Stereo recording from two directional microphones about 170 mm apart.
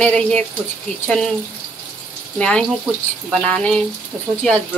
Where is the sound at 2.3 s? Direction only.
5° left (ahead or behind).